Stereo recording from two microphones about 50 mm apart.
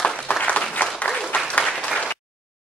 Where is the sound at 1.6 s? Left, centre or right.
Centre.